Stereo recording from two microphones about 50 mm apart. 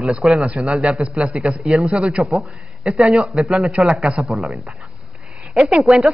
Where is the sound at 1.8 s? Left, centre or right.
Right.